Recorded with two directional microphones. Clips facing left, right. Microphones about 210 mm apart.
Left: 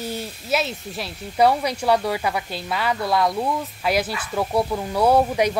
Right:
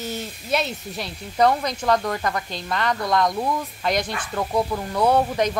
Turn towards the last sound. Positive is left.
turn(degrees=10)  # may be behind; listen again after turning